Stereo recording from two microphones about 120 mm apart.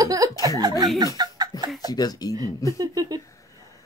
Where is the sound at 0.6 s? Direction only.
35° right (ahead or behind).